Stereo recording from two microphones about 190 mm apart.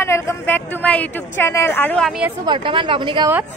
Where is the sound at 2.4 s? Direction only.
25° right (ahead or behind).